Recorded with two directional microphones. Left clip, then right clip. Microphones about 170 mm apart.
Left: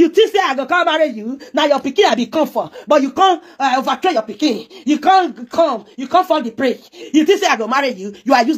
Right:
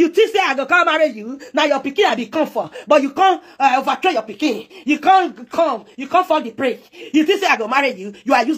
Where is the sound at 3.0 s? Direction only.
40° left (ahead or behind).